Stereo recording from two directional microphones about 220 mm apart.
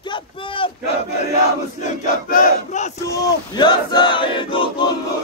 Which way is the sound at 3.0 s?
15° left (ahead or behind).